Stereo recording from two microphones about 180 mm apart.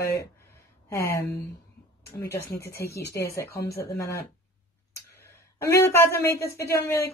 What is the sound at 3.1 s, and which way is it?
Speech, 15° left (ahead or behind).